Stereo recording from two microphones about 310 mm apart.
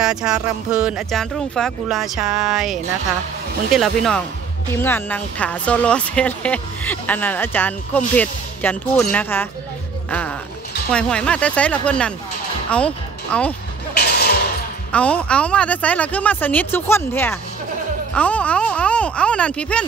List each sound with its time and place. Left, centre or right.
0.0 s speech: centre
10.9 s speech: centre
13.9 s music: left
14.9 s speech: centre